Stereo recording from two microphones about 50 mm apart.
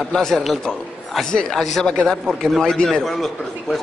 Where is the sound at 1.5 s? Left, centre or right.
Centre.